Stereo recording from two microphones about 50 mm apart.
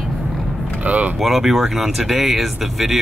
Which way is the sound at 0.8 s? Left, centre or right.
Right.